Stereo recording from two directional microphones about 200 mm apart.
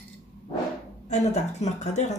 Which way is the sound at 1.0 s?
35° left (ahead or behind).